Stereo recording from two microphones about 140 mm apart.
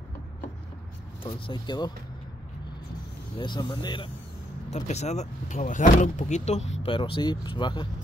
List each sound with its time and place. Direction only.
1.2 s speech: 30° left (ahead or behind)
3.3 s speech: 35° left (ahead or behind)
4.6 s speech: 55° left (ahead or behind); by 7.9 s 35° left (ahead or behind)